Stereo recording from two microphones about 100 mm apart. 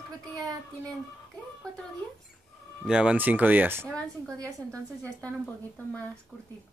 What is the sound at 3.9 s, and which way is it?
A woman's voice, 10° left (ahead or behind).